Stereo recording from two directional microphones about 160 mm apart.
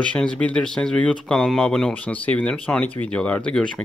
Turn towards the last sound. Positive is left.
turn(degrees=5)  # may be behind; listen again after turning